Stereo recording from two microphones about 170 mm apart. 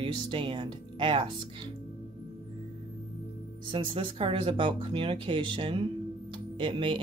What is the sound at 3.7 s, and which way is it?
Speech, 30° right (ahead or behind).